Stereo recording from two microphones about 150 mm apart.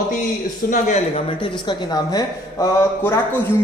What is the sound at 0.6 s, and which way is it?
Speech, 50° left (ahead or behind).